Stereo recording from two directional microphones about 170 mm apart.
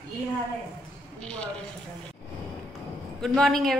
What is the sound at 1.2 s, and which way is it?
Speech, 5° left (ahead or behind).